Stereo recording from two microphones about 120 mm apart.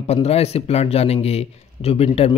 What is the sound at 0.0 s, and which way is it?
A man's voice, 60° left (ahead or behind).